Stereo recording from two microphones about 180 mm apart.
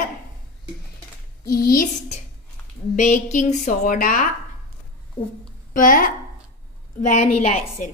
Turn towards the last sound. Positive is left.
turn(degrees=50)  # may be behind; listen again after turning